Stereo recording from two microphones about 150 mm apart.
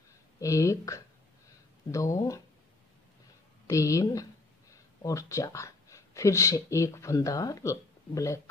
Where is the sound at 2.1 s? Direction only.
20° left (ahead or behind).